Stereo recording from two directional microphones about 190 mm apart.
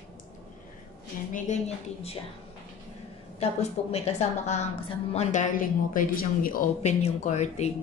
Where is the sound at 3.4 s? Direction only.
35° left (ahead or behind).